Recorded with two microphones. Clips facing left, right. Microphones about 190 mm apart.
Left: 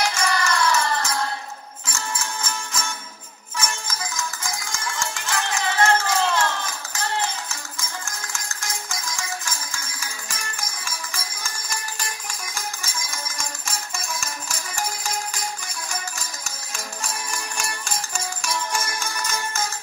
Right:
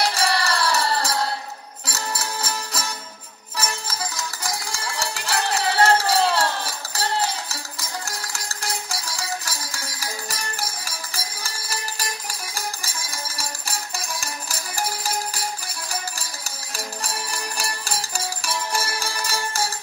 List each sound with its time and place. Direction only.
0.0 s music: 35° right (ahead or behind)